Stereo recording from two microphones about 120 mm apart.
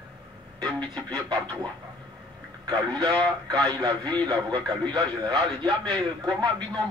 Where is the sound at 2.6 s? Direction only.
35° right (ahead or behind).